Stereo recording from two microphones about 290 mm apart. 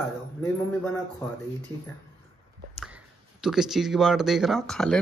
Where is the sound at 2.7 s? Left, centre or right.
Centre.